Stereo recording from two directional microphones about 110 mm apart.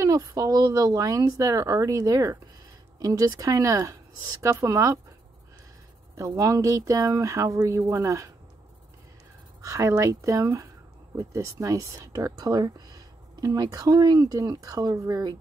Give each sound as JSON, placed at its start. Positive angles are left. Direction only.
{"t": 0.0, "sound": "speech", "side_deg": -35}
{"t": 6.1, "sound": "speech", "side_deg": -30}
{"t": 9.6, "sound": "speech", "side_deg": -30}